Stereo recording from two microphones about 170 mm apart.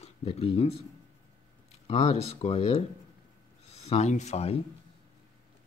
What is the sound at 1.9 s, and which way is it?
Speech, 40° left (ahead or behind).